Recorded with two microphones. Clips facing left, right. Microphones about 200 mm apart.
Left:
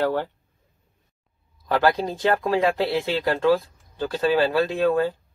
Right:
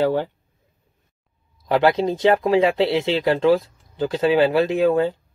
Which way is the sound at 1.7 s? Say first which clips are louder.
Right 4 dB; 20° right (ahead or behind).